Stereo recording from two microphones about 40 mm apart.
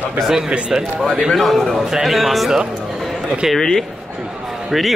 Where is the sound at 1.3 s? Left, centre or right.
Centre.